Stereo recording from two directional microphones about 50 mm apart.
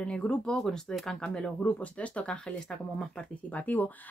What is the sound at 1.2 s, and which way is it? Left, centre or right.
Speech, centre.